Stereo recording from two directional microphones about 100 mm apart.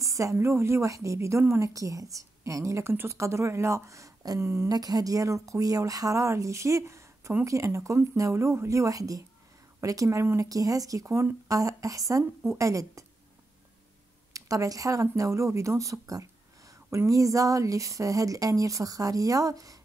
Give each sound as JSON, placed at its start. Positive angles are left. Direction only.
{"t": 0.0, "sound": "a woman's voice", "side_deg": -30}
{"t": 4.6, "sound": "speech", "side_deg": -40}
{"t": 14.3, "sound": "speech", "side_deg": -35}